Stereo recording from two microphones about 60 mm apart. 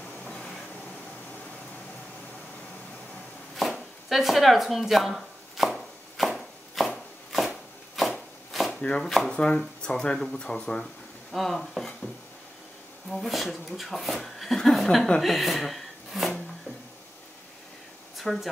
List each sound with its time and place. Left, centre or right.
0.2 s train: centre
3.5 s chopping: centre
7.3 s a sound: centre
8.5 s chopping: centre
9.0 s speech: centre
9.3 s speech: centre
13.1 s speech: centre
18.1 s speech: centre